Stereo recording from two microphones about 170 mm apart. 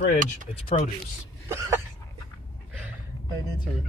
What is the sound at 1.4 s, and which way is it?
Cough, 15° right (ahead or behind).